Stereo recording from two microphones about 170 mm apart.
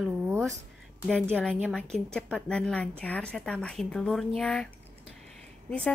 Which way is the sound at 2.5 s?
5° left (ahead or behind).